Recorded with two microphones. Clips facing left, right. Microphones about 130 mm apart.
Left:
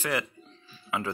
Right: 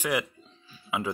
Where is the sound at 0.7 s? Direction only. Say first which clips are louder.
Right 1 dB; 15° right (ahead or behind).